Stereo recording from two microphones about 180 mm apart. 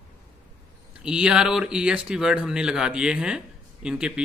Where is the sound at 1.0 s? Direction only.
5° right (ahead or behind).